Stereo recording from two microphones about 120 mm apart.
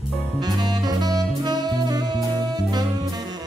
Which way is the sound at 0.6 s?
35° right (ahead or behind).